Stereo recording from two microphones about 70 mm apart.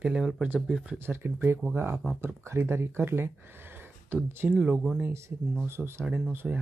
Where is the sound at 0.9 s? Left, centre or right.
Right.